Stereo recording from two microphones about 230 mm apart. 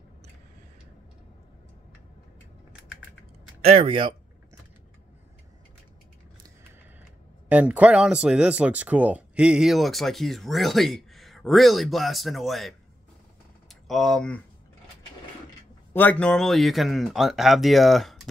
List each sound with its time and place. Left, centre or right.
3.8 s speech: right
7.4 s speech: centre
15.9 s speech: centre